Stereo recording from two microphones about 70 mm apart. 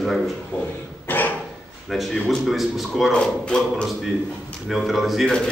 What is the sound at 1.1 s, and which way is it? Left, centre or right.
Dog, left.